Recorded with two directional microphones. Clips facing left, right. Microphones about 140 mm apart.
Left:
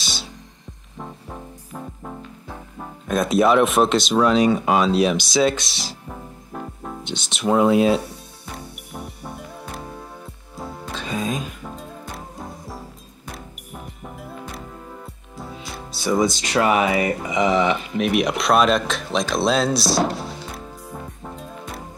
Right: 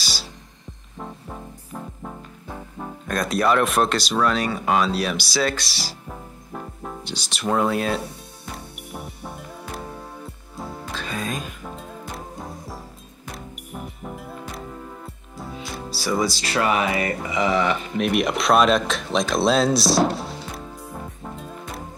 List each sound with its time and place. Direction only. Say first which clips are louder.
0.0 s music: left 1 dB; centre (ahead or behind)
16.3 s speech: left 3 dB; 5° right (ahead or behind)
16.6 s speech: left 3 dB; 15° left (ahead or behind)
17.1 s speech: left 2 dB; centre (ahead or behind)